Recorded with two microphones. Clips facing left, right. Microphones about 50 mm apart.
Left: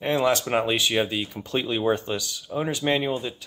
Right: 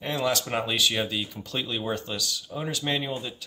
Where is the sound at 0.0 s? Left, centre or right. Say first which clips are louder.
Left 5 dB; left.